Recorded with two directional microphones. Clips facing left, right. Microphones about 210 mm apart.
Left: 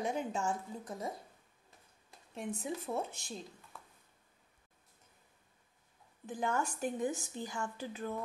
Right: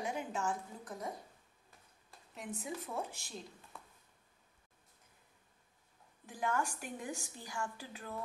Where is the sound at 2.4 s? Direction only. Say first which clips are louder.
Left 4 dB; 25° left (ahead or behind).